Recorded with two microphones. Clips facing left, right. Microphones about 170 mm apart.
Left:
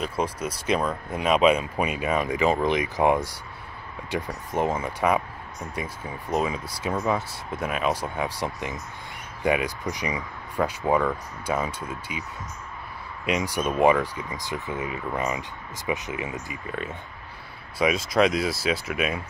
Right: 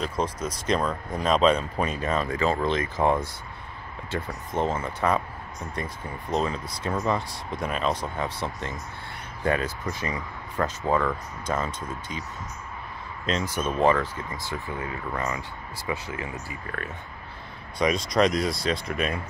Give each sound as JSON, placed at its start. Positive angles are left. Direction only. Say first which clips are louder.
{"t": 0.0, "sound": "speech", "louder": "left 1 dB", "side_deg": 10}
{"t": 17.7, "sound": "speech", "louder": "left 1 dB", "side_deg": 5}